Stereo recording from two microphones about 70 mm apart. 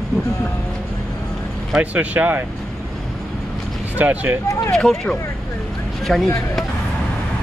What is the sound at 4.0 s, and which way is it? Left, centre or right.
Speech, right.